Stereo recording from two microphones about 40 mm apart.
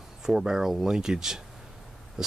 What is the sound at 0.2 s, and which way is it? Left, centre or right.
Speech, centre.